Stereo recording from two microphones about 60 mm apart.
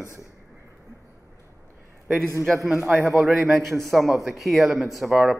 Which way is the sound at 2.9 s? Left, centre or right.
Right.